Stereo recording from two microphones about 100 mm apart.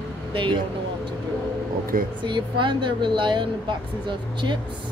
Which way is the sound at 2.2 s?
50° right (ahead or behind).